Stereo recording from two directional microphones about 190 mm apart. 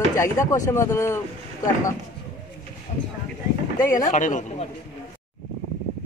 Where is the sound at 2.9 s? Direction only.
35° left (ahead or behind).